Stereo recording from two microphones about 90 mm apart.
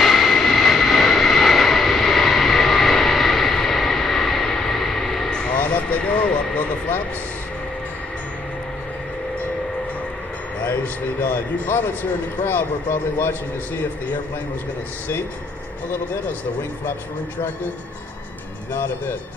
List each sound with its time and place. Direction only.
0.0 s vehicle: centre (ahead or behind)
11.1 s speech: 20° left (ahead or behind)
18.7 s speech: 25° left (ahead or behind)